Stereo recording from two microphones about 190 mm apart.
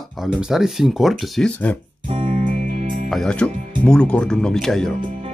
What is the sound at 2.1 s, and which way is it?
Music, 35° right (ahead or behind).